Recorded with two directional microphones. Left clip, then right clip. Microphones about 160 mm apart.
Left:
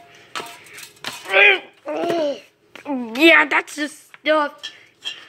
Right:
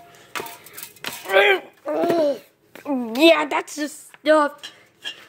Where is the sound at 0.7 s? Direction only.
15° right (ahead or behind).